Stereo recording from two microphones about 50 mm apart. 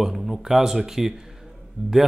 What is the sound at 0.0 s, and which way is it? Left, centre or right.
Speech, centre.